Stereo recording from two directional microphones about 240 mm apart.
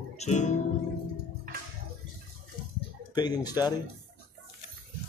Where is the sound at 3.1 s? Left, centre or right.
Centre.